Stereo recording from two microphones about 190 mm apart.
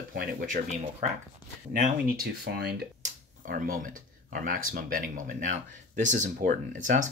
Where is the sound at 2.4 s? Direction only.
55° right (ahead or behind).